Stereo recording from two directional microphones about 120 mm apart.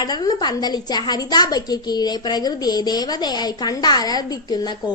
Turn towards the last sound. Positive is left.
turn(degrees=35)  # may be behind; listen again after turning